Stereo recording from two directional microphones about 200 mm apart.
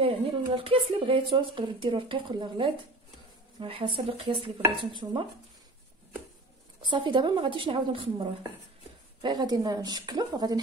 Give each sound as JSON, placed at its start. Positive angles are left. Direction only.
{"t": 0.0, "sound": "a woman's voice", "side_deg": -30}
{"t": 4.6, "sound": "dishes", "side_deg": -15}
{"t": 6.8, "sound": "a woman's voice", "side_deg": -25}